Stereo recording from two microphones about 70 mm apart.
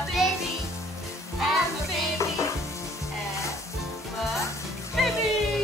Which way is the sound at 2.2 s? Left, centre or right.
Left.